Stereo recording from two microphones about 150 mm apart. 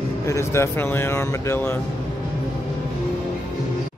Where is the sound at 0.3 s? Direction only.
20° left (ahead or behind).